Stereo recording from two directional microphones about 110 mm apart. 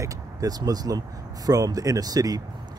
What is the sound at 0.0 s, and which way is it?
Speech, 35° right (ahead or behind).